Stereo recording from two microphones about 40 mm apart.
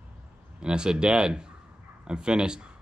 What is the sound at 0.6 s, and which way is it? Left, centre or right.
Speech, right.